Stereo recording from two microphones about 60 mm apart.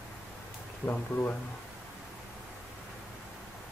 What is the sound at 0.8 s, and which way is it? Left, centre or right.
Speech, left.